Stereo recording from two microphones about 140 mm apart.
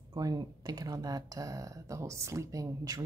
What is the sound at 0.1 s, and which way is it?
Speech, 25° right (ahead or behind).